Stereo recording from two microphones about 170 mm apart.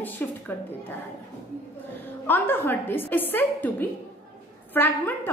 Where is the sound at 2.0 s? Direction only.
10° left (ahead or behind).